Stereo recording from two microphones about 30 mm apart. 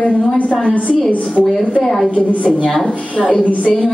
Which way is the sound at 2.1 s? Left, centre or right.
Left.